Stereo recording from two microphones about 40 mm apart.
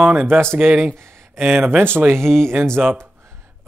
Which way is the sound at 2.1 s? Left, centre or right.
Right.